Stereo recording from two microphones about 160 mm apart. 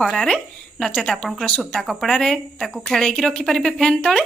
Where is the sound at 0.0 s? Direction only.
Centre (ahead or behind).